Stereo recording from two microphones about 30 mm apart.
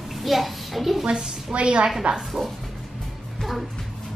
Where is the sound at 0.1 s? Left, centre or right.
Centre.